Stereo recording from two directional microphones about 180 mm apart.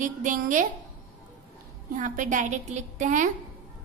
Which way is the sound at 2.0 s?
45° right (ahead or behind).